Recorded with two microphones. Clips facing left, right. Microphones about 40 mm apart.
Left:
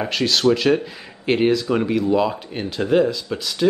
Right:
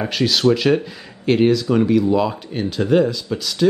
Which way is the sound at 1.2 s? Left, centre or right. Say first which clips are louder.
Right 2 dB; centre.